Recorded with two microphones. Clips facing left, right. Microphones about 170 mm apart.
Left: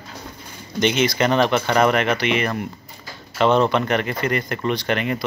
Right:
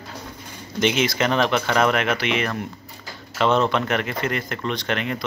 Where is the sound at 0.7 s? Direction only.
Centre (ahead or behind).